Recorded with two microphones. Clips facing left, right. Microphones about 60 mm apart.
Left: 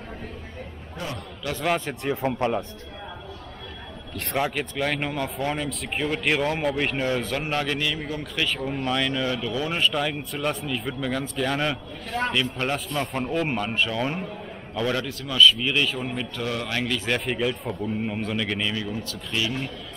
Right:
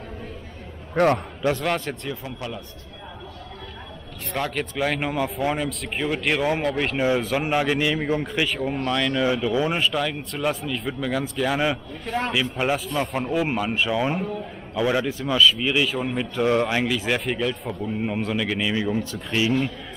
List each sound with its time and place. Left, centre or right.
0.9 s a man's voice: right
1.6 s speech: centre
2.2 s speech: left
4.4 s a man's voice: centre
7.0 s a man's voice: centre
8.8 s speech: centre
9.2 s a man's voice: centre
9.8 s a man's voice: centre
15.3 s a man's voice: centre
16.4 s speech: right
16.8 s speech: centre
18.7 s speech: right